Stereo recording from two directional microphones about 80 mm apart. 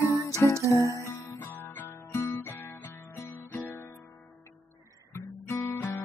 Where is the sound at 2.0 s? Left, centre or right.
Left.